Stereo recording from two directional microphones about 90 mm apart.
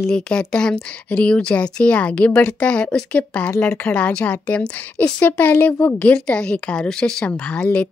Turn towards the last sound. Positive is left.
turn(degrees=15)  # may be behind; listen again after turning